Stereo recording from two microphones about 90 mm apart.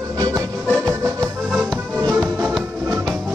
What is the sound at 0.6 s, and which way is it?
Music, 15° left (ahead or behind).